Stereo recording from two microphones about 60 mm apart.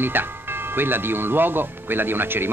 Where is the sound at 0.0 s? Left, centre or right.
Right.